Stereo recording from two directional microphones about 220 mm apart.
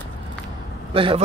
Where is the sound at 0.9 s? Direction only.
25° right (ahead or behind).